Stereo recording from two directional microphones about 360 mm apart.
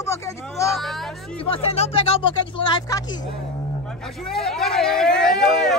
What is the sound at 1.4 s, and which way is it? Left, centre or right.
Speech, centre.